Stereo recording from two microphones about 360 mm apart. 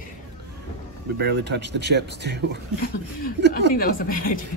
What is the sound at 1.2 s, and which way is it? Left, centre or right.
Speech, right.